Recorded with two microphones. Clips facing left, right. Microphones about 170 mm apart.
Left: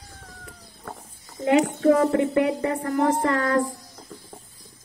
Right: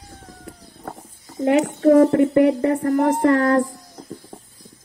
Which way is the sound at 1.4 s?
40° right (ahead or behind).